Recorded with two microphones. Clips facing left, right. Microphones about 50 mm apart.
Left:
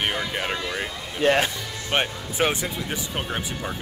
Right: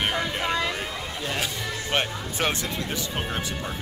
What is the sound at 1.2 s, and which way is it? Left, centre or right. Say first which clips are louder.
Speech: left 11 dB; left.